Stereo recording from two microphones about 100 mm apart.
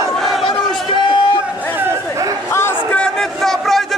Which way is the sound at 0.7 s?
50° left (ahead or behind).